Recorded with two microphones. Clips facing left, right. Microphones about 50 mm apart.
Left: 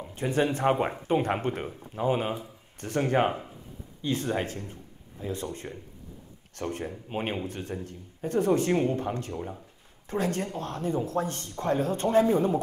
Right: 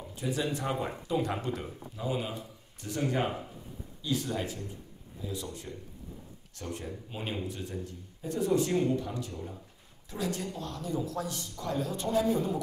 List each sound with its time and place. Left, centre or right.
0.1 s speech: left